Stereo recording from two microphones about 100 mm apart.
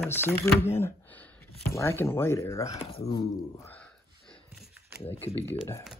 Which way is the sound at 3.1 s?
40° left (ahead or behind).